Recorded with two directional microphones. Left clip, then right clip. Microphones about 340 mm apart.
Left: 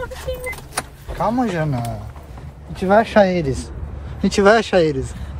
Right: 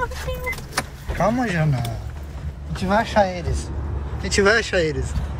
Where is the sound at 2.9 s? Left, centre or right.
Left.